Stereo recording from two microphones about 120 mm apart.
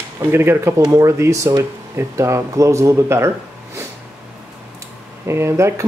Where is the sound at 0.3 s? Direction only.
20° right (ahead or behind).